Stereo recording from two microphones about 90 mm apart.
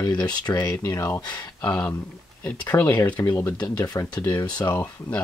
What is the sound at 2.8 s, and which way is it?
Speech, 20° left (ahead or behind).